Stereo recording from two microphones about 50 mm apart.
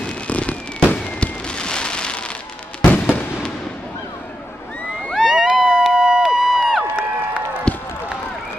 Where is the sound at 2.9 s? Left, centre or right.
Left.